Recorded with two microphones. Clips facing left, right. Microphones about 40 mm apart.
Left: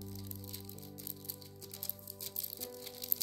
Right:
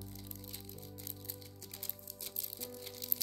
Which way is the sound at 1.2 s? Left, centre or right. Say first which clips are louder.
Even; right.